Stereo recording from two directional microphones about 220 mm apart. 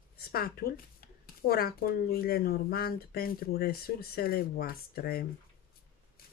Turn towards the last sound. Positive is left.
turn(degrees=45)  # may be behind; listen again after turning